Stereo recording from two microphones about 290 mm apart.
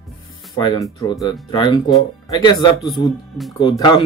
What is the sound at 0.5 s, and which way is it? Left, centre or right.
Speech, centre.